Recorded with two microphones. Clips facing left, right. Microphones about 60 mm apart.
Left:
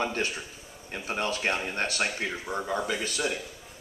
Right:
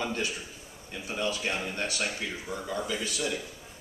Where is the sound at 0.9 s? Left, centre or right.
Left.